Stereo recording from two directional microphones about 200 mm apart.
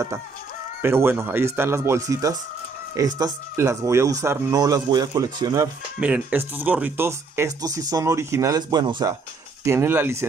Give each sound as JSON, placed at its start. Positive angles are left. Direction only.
{"t": 0.8, "sound": "speech", "side_deg": -10}
{"t": 5.9, "sound": "speech", "side_deg": -5}